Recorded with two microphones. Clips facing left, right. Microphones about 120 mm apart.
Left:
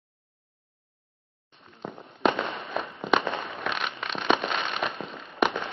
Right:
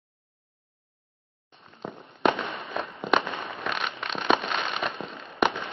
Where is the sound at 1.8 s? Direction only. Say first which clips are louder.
Right 1 dB; centre (ahead or behind).